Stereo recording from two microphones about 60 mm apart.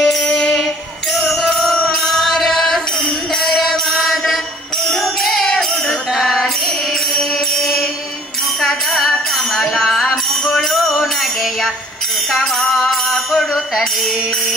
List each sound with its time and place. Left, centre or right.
0.0 s music: centre
12.3 s music: centre